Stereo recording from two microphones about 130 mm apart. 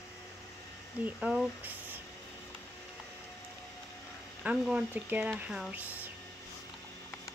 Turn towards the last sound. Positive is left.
turn(degrees=-10)  # may be behind; listen again after turning